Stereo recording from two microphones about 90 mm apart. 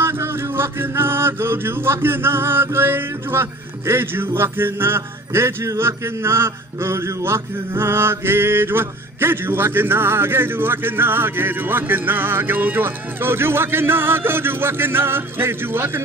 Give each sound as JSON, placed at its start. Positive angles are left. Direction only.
{"t": 0.0, "sound": "music", "side_deg": -25}